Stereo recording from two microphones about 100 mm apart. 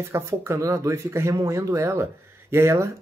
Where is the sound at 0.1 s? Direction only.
25° right (ahead or behind).